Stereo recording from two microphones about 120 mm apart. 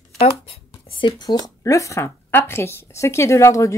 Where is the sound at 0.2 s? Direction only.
55° left (ahead or behind).